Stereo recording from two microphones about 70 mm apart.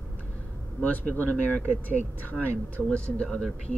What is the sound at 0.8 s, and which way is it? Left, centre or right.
Speech, left.